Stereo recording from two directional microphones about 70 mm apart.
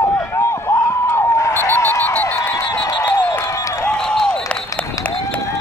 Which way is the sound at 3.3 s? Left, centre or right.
Left.